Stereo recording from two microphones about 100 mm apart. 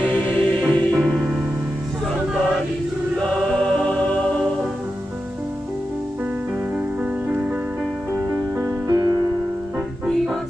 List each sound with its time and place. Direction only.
0.0 s music: 15° left (ahead or behind)
0.9 s music: centre (ahead or behind)
3.2 s choir: 10° left (ahead or behind)
8.1 s music: 30° right (ahead or behind)